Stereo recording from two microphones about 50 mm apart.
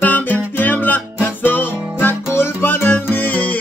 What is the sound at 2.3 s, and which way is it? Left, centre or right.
Music, left.